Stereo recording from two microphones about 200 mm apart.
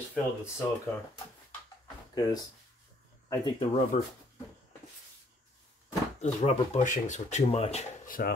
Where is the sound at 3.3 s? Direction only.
20° left (ahead or behind).